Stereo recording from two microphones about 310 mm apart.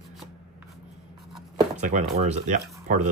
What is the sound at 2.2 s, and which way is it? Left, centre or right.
Speech, right.